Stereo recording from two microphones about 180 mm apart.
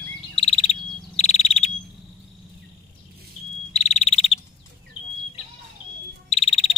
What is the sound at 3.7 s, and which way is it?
Frog, 40° left (ahead or behind).